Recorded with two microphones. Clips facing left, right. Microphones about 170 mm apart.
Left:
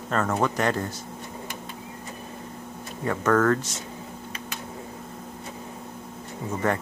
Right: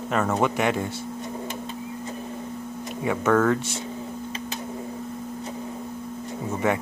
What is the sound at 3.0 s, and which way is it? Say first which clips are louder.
Speech: right 1 dB; 10° right (ahead or behind).